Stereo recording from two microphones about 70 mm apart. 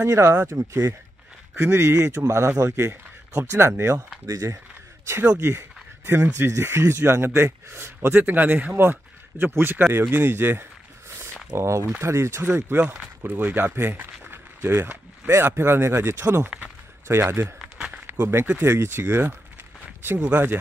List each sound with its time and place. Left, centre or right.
0.0 s speech: right
1.5 s speech: right
3.5 s speech: right
4.3 s speech: right
12.9 s speech: right
16.4 s speech: centre
17.1 s speech: right
17.7 s a sound: centre
18.2 s speech: right